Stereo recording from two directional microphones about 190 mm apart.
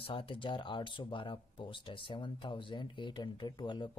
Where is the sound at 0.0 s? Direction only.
30° left (ahead or behind).